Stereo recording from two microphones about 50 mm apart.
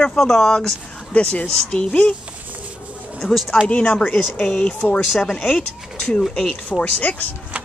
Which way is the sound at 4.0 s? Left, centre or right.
Centre.